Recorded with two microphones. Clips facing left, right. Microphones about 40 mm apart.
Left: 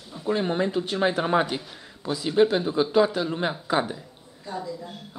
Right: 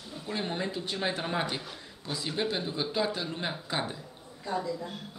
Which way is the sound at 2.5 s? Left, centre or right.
Left.